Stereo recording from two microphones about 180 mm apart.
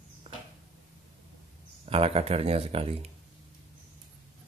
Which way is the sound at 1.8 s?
35° right (ahead or behind).